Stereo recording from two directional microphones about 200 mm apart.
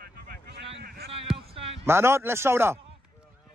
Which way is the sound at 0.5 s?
55° right (ahead or behind).